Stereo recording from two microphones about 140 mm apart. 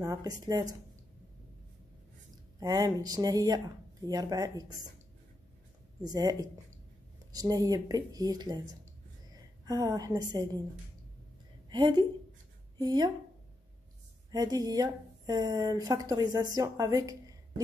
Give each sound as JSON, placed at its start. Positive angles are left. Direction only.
{"t": 0.0, "sound": "speech", "side_deg": -25}
{"t": 2.6, "sound": "speech", "side_deg": -25}
{"t": 6.0, "sound": "speech", "side_deg": -30}
{"t": 7.3, "sound": "a woman's voice", "side_deg": -25}
{"t": 11.7, "sound": "a woman's voice", "side_deg": -30}
{"t": 14.3, "sound": "speech", "side_deg": -25}